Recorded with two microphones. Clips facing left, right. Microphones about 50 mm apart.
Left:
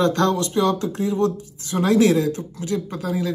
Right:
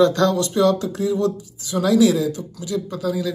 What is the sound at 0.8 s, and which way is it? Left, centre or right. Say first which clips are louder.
Speech: even; left.